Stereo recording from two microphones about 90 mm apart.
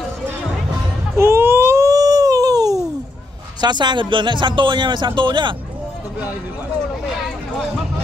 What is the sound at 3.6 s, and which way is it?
Speech, 55° right (ahead or behind).